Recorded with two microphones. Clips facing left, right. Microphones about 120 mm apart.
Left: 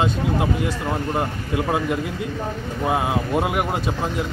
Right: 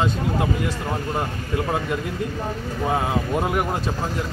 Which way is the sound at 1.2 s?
20° left (ahead or behind).